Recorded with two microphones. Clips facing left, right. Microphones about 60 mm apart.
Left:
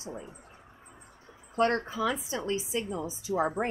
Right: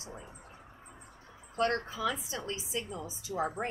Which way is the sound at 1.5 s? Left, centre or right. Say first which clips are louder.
Left 4 dB; left.